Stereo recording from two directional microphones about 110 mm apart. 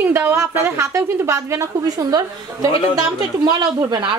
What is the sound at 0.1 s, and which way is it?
A woman's voice, 20° right (ahead or behind).